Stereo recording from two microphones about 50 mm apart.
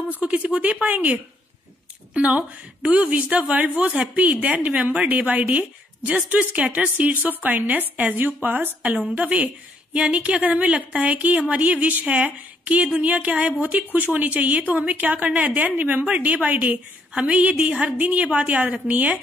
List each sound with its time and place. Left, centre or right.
0.2 s a woman's voice: right